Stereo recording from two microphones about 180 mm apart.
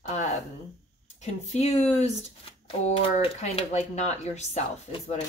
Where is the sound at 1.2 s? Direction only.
40° left (ahead or behind).